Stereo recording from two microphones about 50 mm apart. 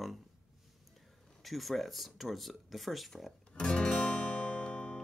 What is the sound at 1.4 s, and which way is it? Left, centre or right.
Speech, centre.